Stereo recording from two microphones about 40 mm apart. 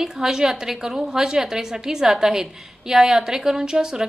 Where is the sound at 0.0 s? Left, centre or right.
Centre.